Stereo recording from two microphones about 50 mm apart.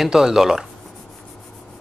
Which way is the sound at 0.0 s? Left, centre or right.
Centre.